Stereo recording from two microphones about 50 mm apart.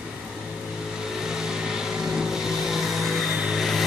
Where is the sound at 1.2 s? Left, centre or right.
Centre.